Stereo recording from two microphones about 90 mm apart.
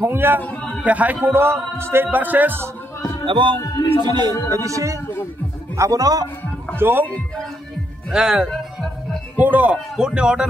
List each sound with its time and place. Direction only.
0.0 s speech: 25° right (ahead or behind)
0.4 s a sound: 15° left (ahead or behind)
0.8 s speech: 15° right (ahead or behind)
3.3 s speech: 70° right (ahead or behind)
3.6 s speech: 50° left (ahead or behind)
4.0 s a man's voice: 50° right (ahead or behind)
4.5 s a man's voice: 35° right (ahead or behind)
6.8 s speech: 25° right (ahead or behind)
8.1 s speech: 10° right (ahead or behind)